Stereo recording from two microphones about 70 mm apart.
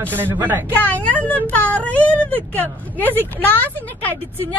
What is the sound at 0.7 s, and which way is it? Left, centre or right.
Speech, left.